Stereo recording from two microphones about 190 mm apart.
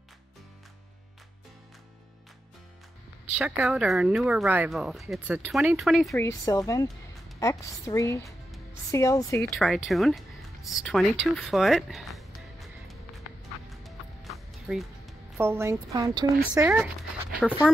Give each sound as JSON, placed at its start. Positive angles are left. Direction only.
{"t": 3.3, "sound": "speech", "side_deg": -10}
{"t": 6.1, "sound": "a woman's voice", "side_deg": 15}
{"t": 9.5, "sound": "speech", "side_deg": 0}
{"t": 13.7, "sound": "music", "side_deg": 0}
{"t": 15.3, "sound": "a woman's voice", "side_deg": -15}
{"t": 17.4, "sound": "speech", "side_deg": 0}